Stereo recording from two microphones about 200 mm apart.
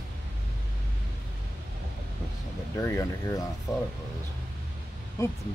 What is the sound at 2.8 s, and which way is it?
Speech, 15° left (ahead or behind).